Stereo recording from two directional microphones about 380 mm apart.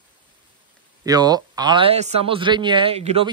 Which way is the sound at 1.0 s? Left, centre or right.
Centre.